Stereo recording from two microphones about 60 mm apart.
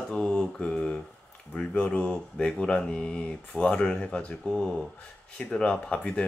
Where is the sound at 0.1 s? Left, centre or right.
Centre.